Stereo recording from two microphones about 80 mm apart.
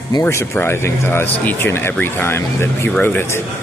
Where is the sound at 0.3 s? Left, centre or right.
Left.